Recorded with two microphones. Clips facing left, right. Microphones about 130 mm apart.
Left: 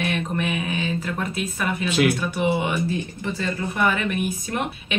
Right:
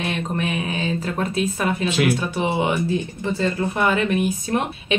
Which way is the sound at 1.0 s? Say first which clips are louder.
Right 4 dB; 30° right (ahead or behind).